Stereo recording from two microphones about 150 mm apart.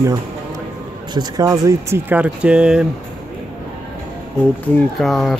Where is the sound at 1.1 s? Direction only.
25° right (ahead or behind); by 2.8 s 5° right (ahead or behind).